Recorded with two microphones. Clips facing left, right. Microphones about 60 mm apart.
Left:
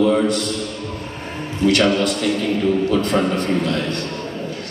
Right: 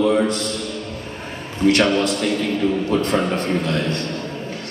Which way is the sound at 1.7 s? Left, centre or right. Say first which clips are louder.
Even; right.